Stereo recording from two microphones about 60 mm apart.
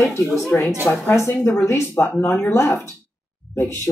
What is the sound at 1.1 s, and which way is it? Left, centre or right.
Speech, left.